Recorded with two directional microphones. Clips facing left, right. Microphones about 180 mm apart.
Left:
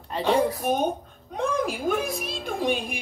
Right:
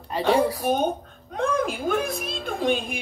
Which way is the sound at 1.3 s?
10° left (ahead or behind).